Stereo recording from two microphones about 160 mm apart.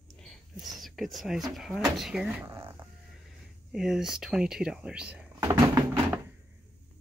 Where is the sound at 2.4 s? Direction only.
15° right (ahead or behind).